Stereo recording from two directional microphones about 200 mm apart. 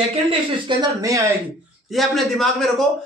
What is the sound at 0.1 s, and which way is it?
Speech, 25° right (ahead or behind).